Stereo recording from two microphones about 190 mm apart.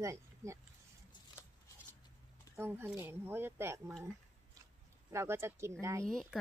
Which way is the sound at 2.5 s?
10° right (ahead or behind).